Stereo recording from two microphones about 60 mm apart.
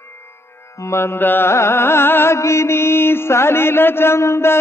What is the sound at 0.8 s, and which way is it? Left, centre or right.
Mantra, left.